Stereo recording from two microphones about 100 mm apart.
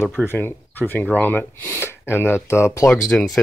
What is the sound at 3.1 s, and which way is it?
Speech, 5° left (ahead or behind).